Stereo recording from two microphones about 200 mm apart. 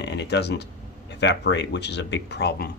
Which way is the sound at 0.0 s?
60° left (ahead or behind).